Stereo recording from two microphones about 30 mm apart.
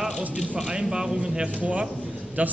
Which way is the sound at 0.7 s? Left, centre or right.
Right.